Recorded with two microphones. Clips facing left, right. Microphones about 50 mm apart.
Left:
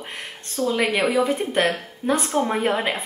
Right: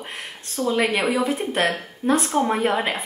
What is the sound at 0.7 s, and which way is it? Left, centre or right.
A woman's voice, centre.